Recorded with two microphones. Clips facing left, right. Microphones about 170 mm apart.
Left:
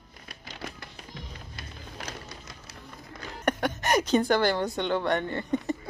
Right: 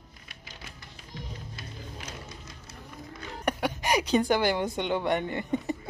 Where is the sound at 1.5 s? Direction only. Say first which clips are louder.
Right 1 dB; 70° left (ahead or behind).